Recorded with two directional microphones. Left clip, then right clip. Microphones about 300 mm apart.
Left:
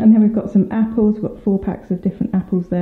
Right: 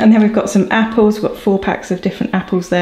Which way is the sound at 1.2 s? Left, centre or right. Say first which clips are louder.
Right 6 dB; right.